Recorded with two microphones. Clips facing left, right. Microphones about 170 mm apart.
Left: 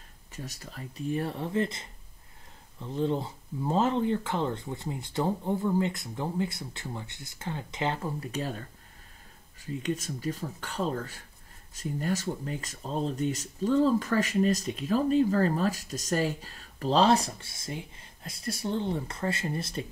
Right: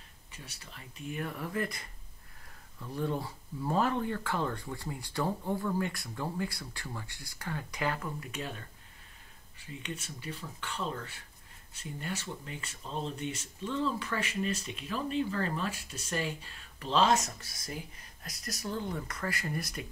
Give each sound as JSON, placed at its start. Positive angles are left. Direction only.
{"t": 0.3, "sound": "speech", "side_deg": 40}